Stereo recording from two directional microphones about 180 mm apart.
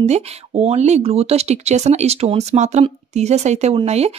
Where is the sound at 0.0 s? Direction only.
35° right (ahead or behind).